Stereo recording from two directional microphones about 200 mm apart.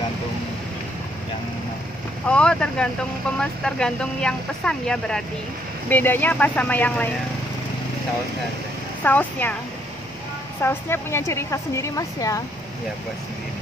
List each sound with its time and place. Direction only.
2.2 s a woman's voice: 5° left (ahead or behind)
9.0 s a woman's voice: 10° left (ahead or behind)
10.6 s a woman's voice: 10° left (ahead or behind)